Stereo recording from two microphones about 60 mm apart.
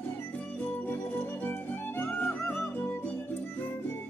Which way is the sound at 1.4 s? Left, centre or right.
Left.